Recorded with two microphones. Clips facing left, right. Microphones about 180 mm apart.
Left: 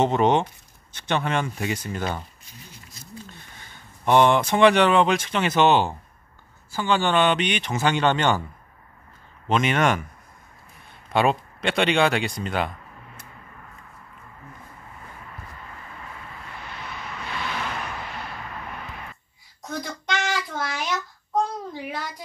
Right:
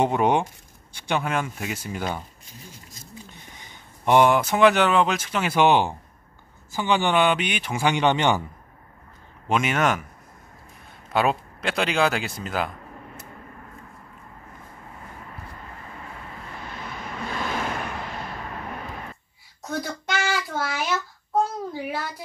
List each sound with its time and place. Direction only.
0.0 s speech: 10° right (ahead or behind)
9.5 s speech: 5° right (ahead or behind)
11.1 s speech: centre (ahead or behind)
17.3 s vehicle: 45° right (ahead or behind)
19.7 s child singing: 5° right (ahead or behind)